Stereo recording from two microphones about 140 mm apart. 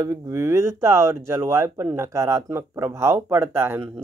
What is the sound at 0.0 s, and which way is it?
Speech, 20° right (ahead or behind).